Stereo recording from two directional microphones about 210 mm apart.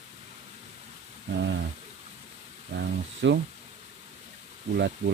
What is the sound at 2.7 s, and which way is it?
Speech, 50° right (ahead or behind).